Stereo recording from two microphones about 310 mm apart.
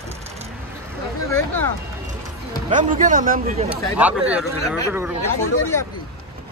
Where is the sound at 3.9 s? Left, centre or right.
Centre.